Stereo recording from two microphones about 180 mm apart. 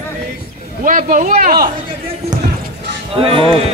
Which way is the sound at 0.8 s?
45° right (ahead or behind).